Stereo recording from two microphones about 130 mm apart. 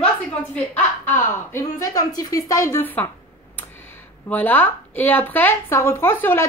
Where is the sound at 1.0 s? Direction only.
20° left (ahead or behind).